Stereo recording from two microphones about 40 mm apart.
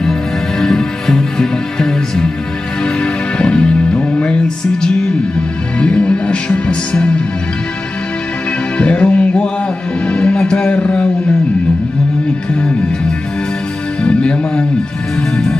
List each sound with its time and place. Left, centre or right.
0.0 s music: centre
5.8 s music: left
8.7 s music: left
14.0 s music: left